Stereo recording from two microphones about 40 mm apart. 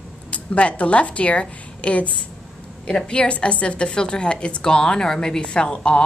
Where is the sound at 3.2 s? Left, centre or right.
Left.